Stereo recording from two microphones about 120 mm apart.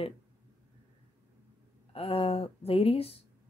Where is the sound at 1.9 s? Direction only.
55° left (ahead or behind).